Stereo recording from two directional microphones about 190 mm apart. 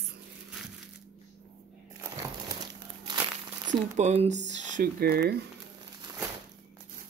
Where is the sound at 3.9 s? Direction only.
35° right (ahead or behind); by 5.3 s 55° right (ahead or behind).